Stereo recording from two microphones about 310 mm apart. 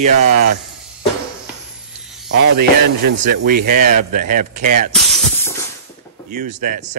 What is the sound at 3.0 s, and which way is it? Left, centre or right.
Speech, right.